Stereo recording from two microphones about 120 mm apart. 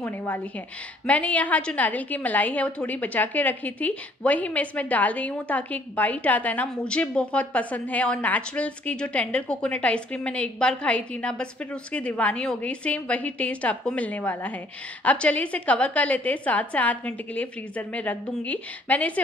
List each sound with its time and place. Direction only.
0.0 s a woman's voice: 15° left (ahead or behind)